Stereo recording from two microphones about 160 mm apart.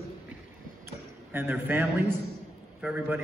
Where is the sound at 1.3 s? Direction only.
10° right (ahead or behind).